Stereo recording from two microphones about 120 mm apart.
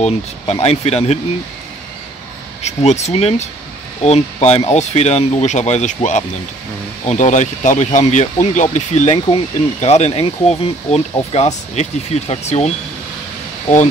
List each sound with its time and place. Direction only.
0.0 s speech: 60° left (ahead or behind)
2.6 s speech: 65° left (ahead or behind)
11.3 s speech: 70° left (ahead or behind)